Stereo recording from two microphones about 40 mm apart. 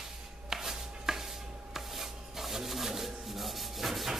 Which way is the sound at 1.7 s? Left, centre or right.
Centre.